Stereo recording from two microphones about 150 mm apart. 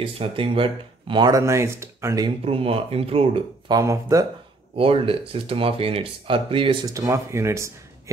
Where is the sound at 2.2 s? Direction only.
40° right (ahead or behind).